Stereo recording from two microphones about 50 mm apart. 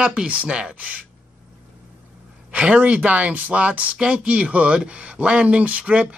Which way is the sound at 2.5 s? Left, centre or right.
Right.